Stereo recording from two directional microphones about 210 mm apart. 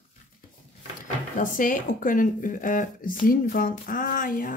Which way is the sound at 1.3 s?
40° left (ahead or behind).